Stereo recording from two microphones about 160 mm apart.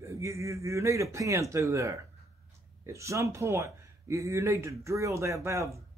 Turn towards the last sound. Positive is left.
turn(degrees=-20)  # may be behind; listen again after turning